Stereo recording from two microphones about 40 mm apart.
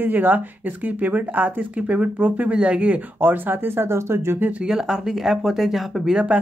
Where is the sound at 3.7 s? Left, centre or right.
Right.